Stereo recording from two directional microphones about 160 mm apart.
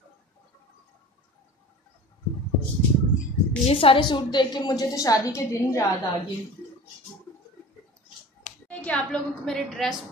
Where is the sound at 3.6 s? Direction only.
35° left (ahead or behind); by 5.9 s 20° left (ahead or behind).